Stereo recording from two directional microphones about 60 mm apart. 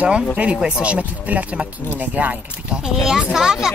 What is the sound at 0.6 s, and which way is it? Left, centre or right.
Speech, centre.